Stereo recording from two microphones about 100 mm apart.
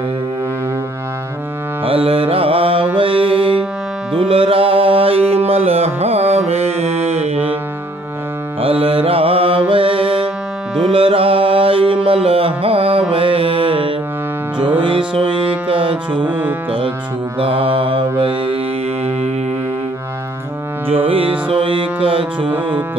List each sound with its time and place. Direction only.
1.9 s music: 65° right (ahead or behind); by 7.5 s 90° right
8.5 s music: 70° right (ahead or behind)
16.3 s music: 20° right (ahead or behind)
17.4 s mantra: 65° right (ahead or behind)
20.9 s music: 70° right (ahead or behind)